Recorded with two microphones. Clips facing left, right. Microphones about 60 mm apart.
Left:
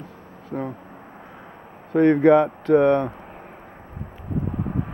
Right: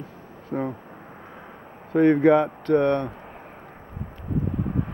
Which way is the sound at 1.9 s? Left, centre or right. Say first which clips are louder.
Left 2 dB; centre.